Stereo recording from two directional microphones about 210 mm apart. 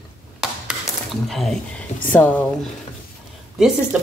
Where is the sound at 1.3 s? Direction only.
Centre (ahead or behind).